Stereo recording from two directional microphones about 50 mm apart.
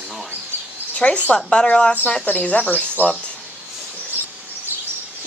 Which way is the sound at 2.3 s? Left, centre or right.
Left.